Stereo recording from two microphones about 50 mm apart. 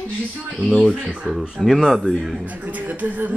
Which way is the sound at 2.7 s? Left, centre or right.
Right.